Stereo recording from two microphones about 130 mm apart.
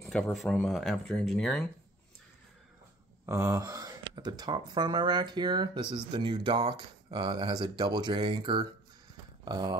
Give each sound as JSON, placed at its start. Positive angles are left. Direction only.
{"t": 0.0, "sound": "speech", "side_deg": 5}
{"t": 3.3, "sound": "speech", "side_deg": -25}